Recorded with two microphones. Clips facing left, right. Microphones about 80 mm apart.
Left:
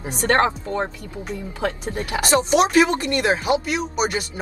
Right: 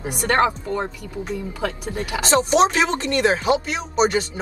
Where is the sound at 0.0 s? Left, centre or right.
Left.